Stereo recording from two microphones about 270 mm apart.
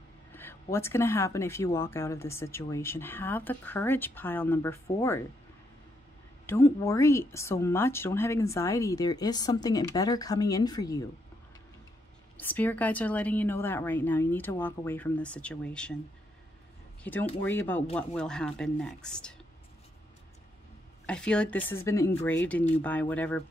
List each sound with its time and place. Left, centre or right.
0.3 s a woman's voice: centre
6.4 s a woman's voice: centre
12.4 s a woman's voice: centre
17.0 s a woman's voice: centre
21.0 s a woman's voice: centre